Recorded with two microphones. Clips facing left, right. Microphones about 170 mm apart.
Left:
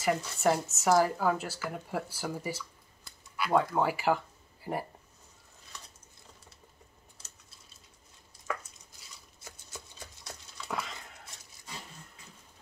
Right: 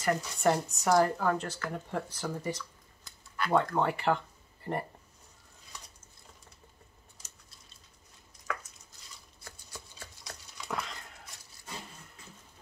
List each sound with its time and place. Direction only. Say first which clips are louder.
0.0 s speech: even; 5° left (ahead or behind)
9.4 s a sound: left 1 dB; 20° left (ahead or behind)
10.7 s dog: even; centre (ahead or behind)